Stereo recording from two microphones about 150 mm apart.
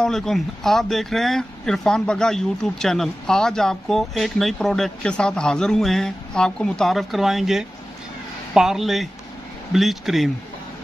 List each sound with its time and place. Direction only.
0.0 s speech: 5° left (ahead or behind)